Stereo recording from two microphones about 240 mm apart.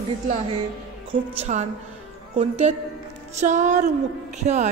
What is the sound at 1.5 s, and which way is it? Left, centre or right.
Music, right.